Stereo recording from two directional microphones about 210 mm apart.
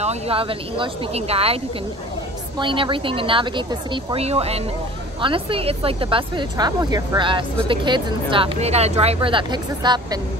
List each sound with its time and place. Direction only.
0.0 s speech: 30° right (ahead or behind)
2.6 s speech: 25° right (ahead or behind)